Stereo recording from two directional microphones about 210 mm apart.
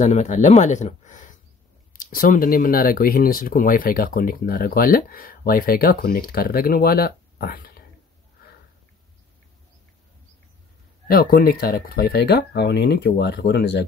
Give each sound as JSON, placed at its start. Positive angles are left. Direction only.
{"t": 0.0, "sound": "speech", "side_deg": 35}
{"t": 11.1, "sound": "speech", "side_deg": 45}